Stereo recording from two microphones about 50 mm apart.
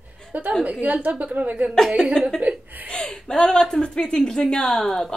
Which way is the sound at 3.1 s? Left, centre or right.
Centre.